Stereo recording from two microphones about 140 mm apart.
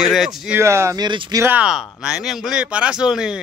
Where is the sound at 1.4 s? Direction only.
10° right (ahead or behind).